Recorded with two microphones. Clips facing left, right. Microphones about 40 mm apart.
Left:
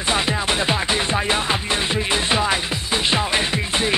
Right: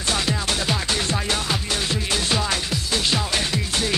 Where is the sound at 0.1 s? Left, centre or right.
Left.